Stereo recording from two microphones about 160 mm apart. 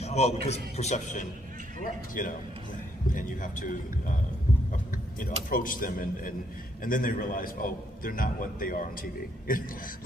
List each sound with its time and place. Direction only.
0.0 s a sound: 40° left (ahead or behind)
0.5 s a man's voice: 45° left (ahead or behind)
2.2 s a man's voice: 60° left (ahead or behind)
5.5 s a man's voice: 60° left (ahead or behind)